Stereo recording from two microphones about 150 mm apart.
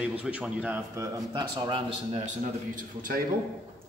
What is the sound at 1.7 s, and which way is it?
Speech, 40° right (ahead or behind).